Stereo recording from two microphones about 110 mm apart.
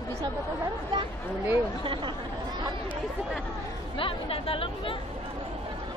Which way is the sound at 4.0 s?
55° left (ahead or behind).